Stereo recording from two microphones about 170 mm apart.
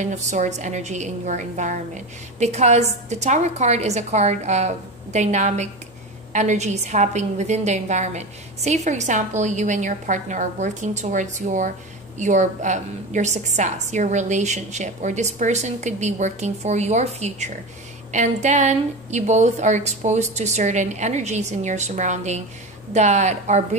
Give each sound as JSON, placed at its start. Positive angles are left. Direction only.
{"t": 0.0, "sound": "a woman's voice", "side_deg": -45}